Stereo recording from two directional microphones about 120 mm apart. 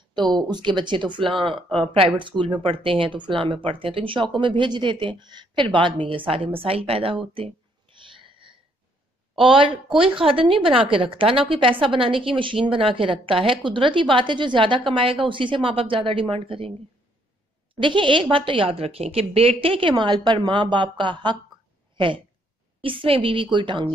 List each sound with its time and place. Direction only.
0.4 s a woman's voice: 40° right (ahead or behind)
8.3 s a sound: 45° right (ahead or behind)
9.4 s a woman's voice: 45° right (ahead or behind)
17.7 s a woman's voice: 45° right (ahead or behind)